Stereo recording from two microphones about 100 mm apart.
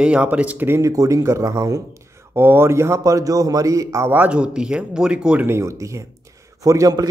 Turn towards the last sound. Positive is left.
turn(degrees=-35)  # may be behind; listen again after turning